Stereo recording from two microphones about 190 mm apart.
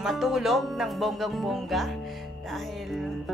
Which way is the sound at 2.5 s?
Centre (ahead or behind).